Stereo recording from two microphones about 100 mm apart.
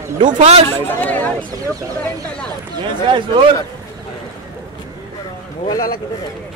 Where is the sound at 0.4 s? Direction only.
90° right.